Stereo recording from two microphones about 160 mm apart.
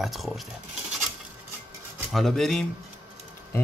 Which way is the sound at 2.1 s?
Centre (ahead or behind).